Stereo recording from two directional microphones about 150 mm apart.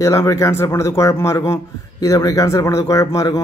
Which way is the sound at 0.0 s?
20° left (ahead or behind).